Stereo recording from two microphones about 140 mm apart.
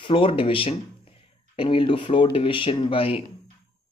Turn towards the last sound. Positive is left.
turn(degrees=40)  # may be behind; listen again after turning